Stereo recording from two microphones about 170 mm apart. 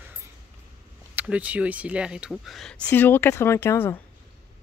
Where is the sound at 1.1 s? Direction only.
10° right (ahead or behind).